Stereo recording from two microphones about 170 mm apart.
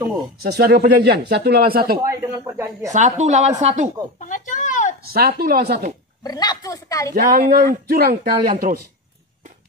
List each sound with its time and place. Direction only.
0.4 s speech: 65° right (ahead or behind)
2.0 s speech: 15° right (ahead or behind)
2.9 s speech: 45° right (ahead or behind)
4.2 s a sound: 50° left (ahead or behind)
5.1 s speech: 65° right (ahead or behind)
6.2 s a woman's voice: 25° left (ahead or behind)
7.3 s speech: 60° right (ahead or behind)